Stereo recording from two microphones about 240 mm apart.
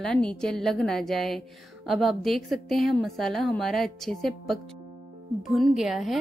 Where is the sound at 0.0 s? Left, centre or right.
Centre.